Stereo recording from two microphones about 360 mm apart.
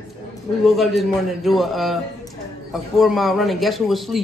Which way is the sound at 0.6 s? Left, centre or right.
Centre.